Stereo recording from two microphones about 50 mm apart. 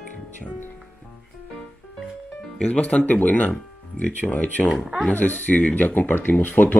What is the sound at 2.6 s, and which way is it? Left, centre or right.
Speech, left.